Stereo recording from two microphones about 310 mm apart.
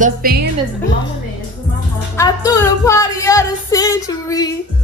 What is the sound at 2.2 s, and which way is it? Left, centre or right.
Music, centre.